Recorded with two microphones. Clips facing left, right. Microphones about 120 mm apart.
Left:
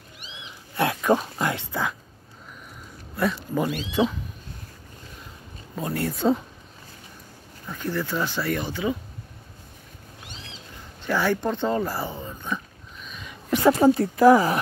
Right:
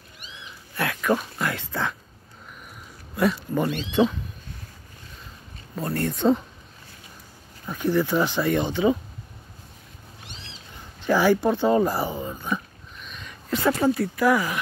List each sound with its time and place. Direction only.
0.7 s speech: 25° left (ahead or behind)
3.2 s speech: centre (ahead or behind)
5.8 s speech: 10° left (ahead or behind)
7.6 s speech: 15° right (ahead or behind)
11.1 s speech: 15° right (ahead or behind)
13.0 s a sound: 5° left (ahead or behind)
13.7 s speech: 25° left (ahead or behind)